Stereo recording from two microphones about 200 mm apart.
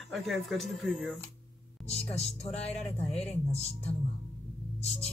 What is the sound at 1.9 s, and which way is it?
Speech, 30° left (ahead or behind).